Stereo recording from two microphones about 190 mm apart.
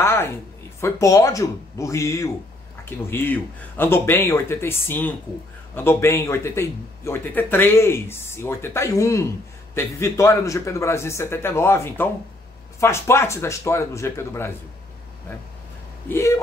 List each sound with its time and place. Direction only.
0.0 s a sound: 15° left (ahead or behind)
0.7 s speech: 15° left (ahead or behind)
16.1 s speech: 15° left (ahead or behind)